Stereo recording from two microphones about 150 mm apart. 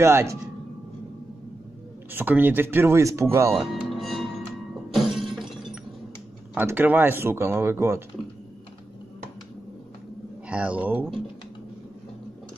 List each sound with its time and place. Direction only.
0.0 s speech: 20° right (ahead or behind)
2.1 s speech: 10° right (ahead or behind)
3.5 s music: centre (ahead or behind)
4.9 s shatter: centre (ahead or behind)
6.5 s speech: 15° right (ahead or behind)
10.5 s speech: 10° right (ahead or behind)